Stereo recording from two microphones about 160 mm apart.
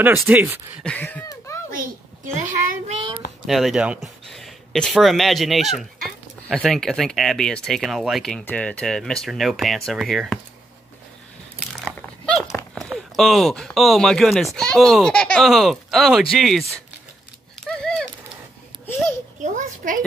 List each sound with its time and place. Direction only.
0.0 s speech: 10° right (ahead or behind)
0.8 s speech: 10° left (ahead or behind)
1.3 s a sound: 20° left (ahead or behind)
2.4 s child singing: 55° right (ahead or behind)
3.4 s speech: centre (ahead or behind)
12.3 s dog: centre (ahead or behind)
12.7 s speech: centre (ahead or behind)
17.6 s a sound: 5° left (ahead or behind)
19.4 s a sound: 55° right (ahead or behind)